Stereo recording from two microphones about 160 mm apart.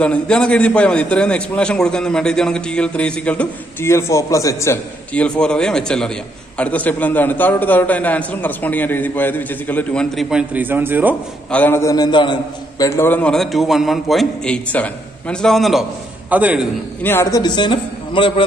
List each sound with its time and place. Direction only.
0.0 s a man's voice: 5° left (ahead or behind)
5.1 s a man's voice: 5° left (ahead or behind)
10.3 s a man's voice: 10° right (ahead or behind)
11.5 s a man's voice: 10° left (ahead or behind)
16.3 s a man's voice: 10° right (ahead or behind)
17.0 s a man's voice: 15° left (ahead or behind)